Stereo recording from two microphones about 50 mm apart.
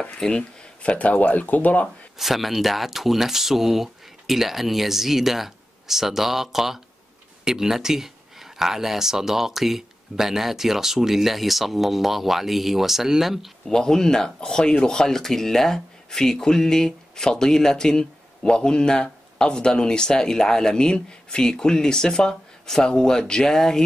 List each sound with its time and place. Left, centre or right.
0.2 s speech: centre
2.1 s speech: centre
13.7 s speech: centre